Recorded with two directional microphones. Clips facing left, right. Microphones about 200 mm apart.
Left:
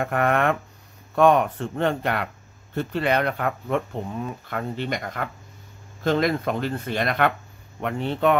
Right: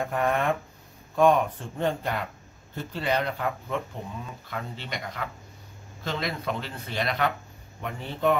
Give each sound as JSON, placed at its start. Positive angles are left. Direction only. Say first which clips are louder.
{"t": 0.0, "sound": "speech", "louder": "left 4 dB", "side_deg": 70}
{"t": 7.8, "sound": "speech", "louder": "left 5 dB", "side_deg": 70}